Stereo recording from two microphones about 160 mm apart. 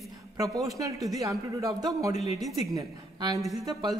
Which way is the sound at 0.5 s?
20° right (ahead or behind).